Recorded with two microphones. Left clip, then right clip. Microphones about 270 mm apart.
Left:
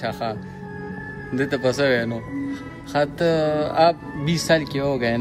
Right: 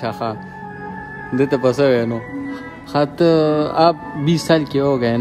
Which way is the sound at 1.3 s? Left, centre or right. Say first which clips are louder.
Right 6 dB; centre.